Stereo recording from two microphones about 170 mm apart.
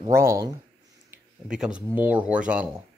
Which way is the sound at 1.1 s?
5° right (ahead or behind).